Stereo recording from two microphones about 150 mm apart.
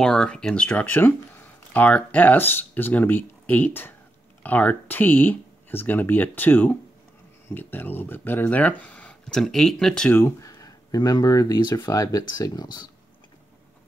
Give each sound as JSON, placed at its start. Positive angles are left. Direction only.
{"t": 0.0, "sound": "speech", "side_deg": 5}
{"t": 10.2, "sound": "speech", "side_deg": 20}